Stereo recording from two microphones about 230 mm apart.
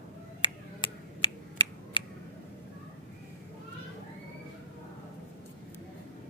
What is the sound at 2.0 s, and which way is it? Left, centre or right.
Tick, left.